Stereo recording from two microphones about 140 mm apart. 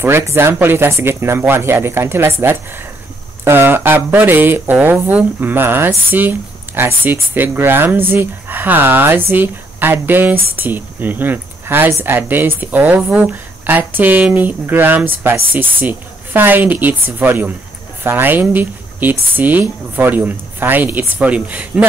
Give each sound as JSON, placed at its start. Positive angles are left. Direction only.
{"t": 0.0, "sound": "speech", "side_deg": -20}
{"t": 3.4, "sound": "speech", "side_deg": -15}